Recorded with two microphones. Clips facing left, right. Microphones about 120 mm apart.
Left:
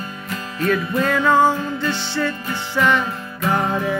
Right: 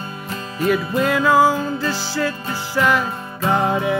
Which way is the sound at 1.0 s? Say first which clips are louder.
Right 1 dB; 5° right (ahead or behind).